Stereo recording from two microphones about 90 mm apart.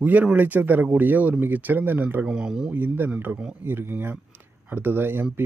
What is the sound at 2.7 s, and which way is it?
Speech, 20° right (ahead or behind).